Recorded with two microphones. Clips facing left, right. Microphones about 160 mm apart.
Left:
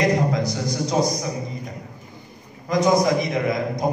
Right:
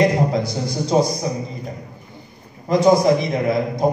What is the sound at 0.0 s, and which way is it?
A man's voice, 30° right (ahead or behind).